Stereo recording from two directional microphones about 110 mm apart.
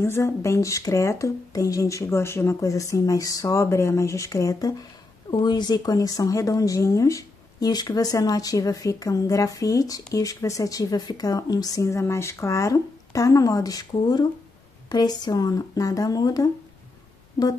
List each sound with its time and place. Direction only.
0.0 s speech: 25° left (ahead or behind)